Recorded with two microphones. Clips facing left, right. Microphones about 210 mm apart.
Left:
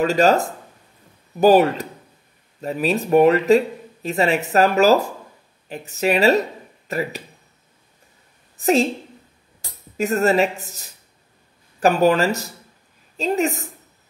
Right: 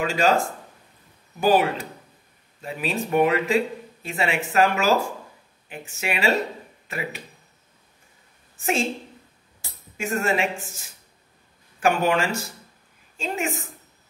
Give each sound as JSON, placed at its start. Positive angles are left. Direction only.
{"t": 0.0, "sound": "speech", "side_deg": 40}
{"t": 8.5, "sound": "a woman's voice", "side_deg": 35}
{"t": 9.9, "sound": "speech", "side_deg": 40}